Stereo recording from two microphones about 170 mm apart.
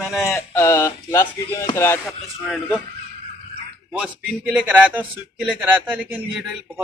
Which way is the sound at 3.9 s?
10° right (ahead or behind).